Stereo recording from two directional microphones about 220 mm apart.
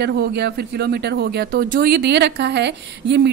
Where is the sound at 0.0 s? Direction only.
50° right (ahead or behind).